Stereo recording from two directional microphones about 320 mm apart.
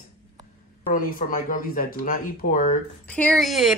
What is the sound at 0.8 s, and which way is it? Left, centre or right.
Speech, left.